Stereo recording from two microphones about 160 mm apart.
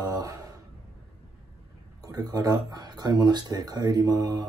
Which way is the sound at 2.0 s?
25° right (ahead or behind).